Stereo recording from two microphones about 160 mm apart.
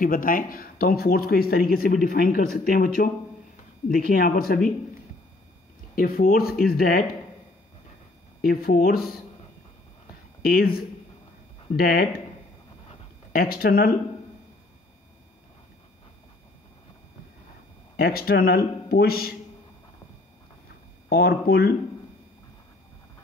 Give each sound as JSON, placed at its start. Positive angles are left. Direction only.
{"t": 0.0, "sound": "speech", "side_deg": 60}
{"t": 5.9, "sound": "speech", "side_deg": 65}
{"t": 8.4, "sound": "speech", "side_deg": 65}
{"t": 10.4, "sound": "speech", "side_deg": 70}
{"t": 13.3, "sound": "speech", "side_deg": 70}
{"t": 17.9, "sound": "speech", "side_deg": 75}
{"t": 21.1, "sound": "speech", "side_deg": 75}